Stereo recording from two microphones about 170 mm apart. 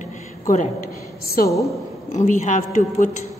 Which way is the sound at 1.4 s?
20° left (ahead or behind).